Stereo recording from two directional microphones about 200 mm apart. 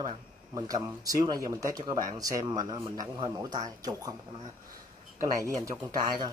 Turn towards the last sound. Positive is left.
turn(degrees=-20)  # may be behind; listen again after turning